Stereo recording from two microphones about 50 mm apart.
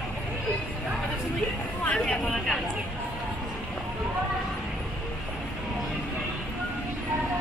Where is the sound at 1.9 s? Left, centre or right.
Centre.